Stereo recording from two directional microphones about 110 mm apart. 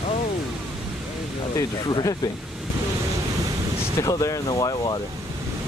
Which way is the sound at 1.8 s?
40° left (ahead or behind).